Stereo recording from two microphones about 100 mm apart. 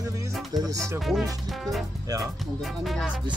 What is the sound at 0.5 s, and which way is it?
Speech, 40° right (ahead or behind).